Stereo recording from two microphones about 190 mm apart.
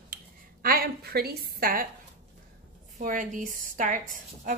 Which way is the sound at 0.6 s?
55° right (ahead or behind).